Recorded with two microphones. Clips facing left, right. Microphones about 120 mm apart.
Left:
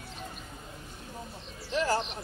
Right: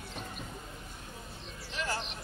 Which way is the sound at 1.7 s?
35° left (ahead or behind).